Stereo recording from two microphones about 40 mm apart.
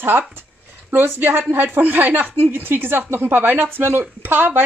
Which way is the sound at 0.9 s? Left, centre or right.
Right.